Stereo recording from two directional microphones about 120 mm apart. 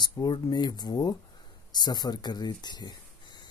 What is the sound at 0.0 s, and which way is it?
Speech, 35° left (ahead or behind).